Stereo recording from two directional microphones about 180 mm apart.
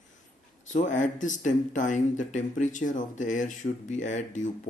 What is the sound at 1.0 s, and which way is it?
Speech, 45° left (ahead or behind).